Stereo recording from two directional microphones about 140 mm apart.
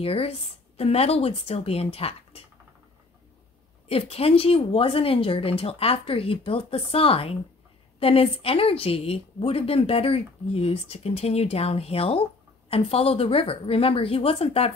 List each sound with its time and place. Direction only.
0.0 s speech: 45° left (ahead or behind)
3.9 s speech: 45° left (ahead or behind)